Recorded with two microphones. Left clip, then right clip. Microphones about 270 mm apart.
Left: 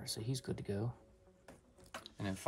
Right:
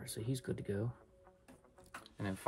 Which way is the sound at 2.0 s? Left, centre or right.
Centre.